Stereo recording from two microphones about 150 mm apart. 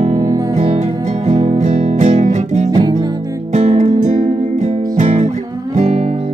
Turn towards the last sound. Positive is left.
turn(degrees=-50)  # may be behind; listen again after turning